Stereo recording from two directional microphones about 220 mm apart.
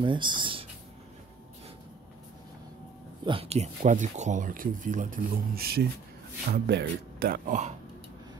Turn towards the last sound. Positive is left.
turn(degrees=-35)  # may be behind; listen again after turning